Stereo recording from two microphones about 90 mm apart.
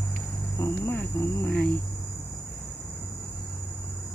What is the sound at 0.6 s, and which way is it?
Speech, 30° left (ahead or behind).